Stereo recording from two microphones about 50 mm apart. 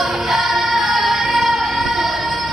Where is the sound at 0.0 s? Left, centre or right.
Centre.